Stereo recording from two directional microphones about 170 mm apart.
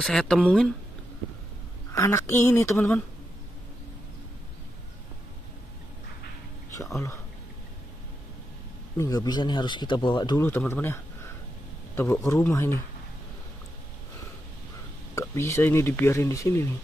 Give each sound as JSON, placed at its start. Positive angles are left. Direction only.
{"t": 0.0, "sound": "speech", "side_deg": 5}
{"t": 1.9, "sound": "speech", "side_deg": 15}
{"t": 6.7, "sound": "speech", "side_deg": 20}
{"t": 8.9, "sound": "speech", "side_deg": 20}
{"t": 10.7, "sound": "speech", "side_deg": 15}
{"t": 15.1, "sound": "speech", "side_deg": 15}